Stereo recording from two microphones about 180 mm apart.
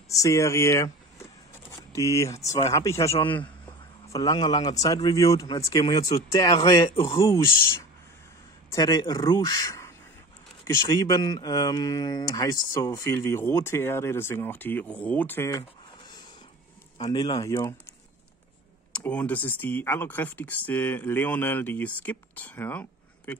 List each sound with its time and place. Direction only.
0.1 s speech: 15° left (ahead or behind)
1.7 s a sound: 20° left (ahead or behind)
2.7 s speech: 20° left (ahead or behind)
3.6 s a sound: 25° left (ahead or behind)
4.8 s speech: 20° left (ahead or behind)
7.2 s speech: 15° left (ahead or behind)
8.7 s speech: 20° left (ahead or behind)
17.1 s speech: 20° left (ahead or behind)
18.9 s speech: 5° left (ahead or behind)